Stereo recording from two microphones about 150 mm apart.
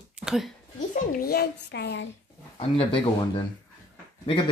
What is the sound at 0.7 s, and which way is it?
A child's voice, 75° left (ahead or behind).